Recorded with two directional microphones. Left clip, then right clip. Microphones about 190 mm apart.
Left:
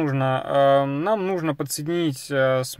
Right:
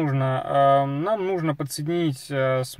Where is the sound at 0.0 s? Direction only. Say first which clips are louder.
Left 2 dB; 25° left (ahead or behind).